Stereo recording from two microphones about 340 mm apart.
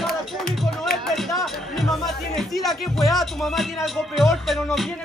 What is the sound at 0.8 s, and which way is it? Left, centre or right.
Speech, centre.